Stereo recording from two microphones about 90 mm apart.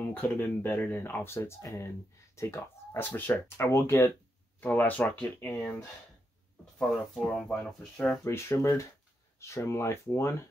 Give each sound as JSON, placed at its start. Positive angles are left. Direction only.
{"t": 0.0, "sound": "speech", "side_deg": 20}
{"t": 6.8, "sound": "speech", "side_deg": 5}
{"t": 8.2, "sound": "speech", "side_deg": 30}